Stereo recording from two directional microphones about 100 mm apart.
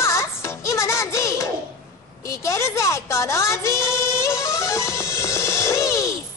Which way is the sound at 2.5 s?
30° left (ahead or behind).